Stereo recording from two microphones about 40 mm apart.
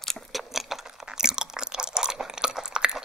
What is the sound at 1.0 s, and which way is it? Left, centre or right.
Chewing, centre.